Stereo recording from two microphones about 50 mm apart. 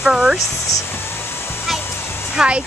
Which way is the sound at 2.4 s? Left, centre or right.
Right.